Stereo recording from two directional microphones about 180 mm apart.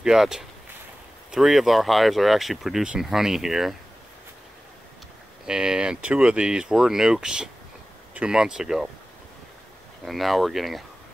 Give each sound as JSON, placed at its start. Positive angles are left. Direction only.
{"t": 0.0, "sound": "speech", "side_deg": 0}
{"t": 5.4, "sound": "speech", "side_deg": -5}
{"t": 10.0, "sound": "speech", "side_deg": 0}